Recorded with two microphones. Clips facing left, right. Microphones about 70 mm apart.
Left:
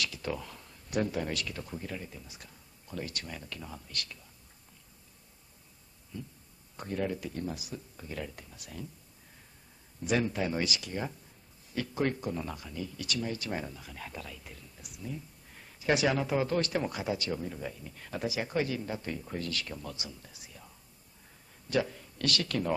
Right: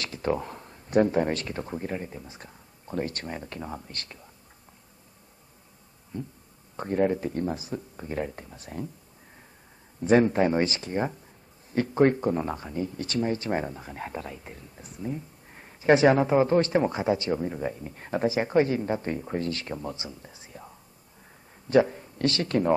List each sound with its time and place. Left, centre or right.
0.0 s speech: right
6.1 s speech: right
10.0 s speech: right